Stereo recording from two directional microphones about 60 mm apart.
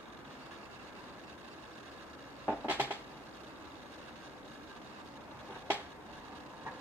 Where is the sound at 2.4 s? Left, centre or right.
Right.